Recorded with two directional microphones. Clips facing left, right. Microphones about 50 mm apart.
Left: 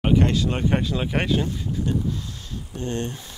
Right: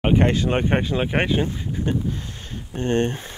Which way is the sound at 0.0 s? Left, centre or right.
Right.